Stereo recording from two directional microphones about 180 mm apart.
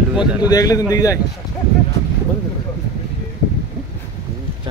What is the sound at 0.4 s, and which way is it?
Speech, 20° left (ahead or behind).